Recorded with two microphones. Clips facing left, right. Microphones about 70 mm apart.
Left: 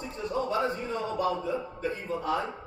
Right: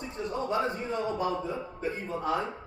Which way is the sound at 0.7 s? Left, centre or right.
Right.